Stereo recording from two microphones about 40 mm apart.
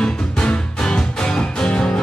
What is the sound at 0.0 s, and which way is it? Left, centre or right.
Music, left.